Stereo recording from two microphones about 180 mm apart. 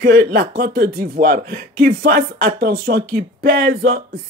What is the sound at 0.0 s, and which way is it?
Speech, 60° right (ahead or behind).